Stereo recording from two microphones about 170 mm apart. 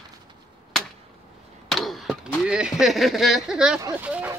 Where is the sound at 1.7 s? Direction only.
Centre (ahead or behind).